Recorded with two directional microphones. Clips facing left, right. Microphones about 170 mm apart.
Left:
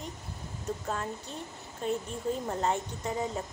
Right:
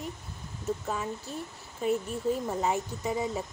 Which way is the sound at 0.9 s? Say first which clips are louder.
Right 1 dB; 5° right (ahead or behind).